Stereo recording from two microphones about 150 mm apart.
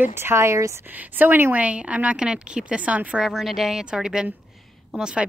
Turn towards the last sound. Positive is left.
turn(degrees=-5)  # may be behind; listen again after turning